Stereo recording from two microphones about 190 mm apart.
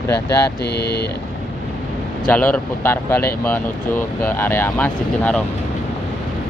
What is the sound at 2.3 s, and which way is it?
Speech, 10° left (ahead or behind).